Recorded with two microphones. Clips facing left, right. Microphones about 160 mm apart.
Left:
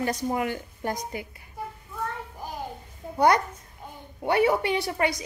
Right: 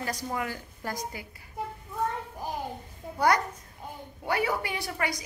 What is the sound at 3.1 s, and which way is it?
A child's voice, 25° left (ahead or behind).